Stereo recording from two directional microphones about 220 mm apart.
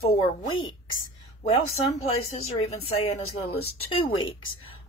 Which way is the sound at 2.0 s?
30° left (ahead or behind).